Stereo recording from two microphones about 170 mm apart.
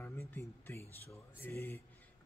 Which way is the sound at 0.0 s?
15° left (ahead or behind).